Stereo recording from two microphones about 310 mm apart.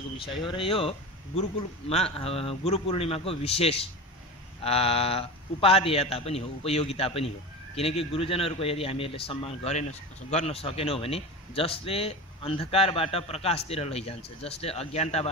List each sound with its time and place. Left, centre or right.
0.5 s a man's voice: centre